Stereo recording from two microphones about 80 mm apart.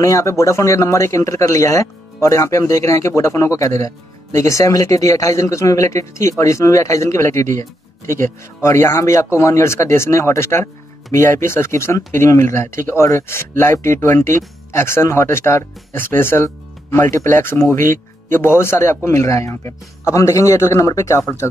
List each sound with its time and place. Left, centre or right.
0.0 s speech: left
8.6 s speech: left